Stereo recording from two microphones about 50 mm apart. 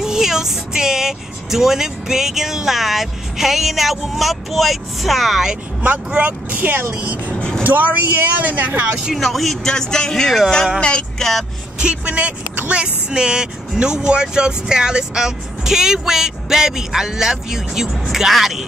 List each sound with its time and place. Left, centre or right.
0.0 s speech: centre
5.8 s speech: right
7.3 s vehicle: left
7.6 s speech: right
9.1 s speech: centre
10.8 s music: centre
11.8 s speech: right; by 18.7 s centre